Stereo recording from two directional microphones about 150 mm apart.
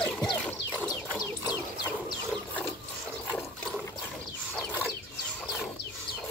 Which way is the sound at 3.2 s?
5° left (ahead or behind).